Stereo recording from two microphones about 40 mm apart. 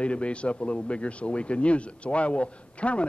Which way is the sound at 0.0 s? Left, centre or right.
Left.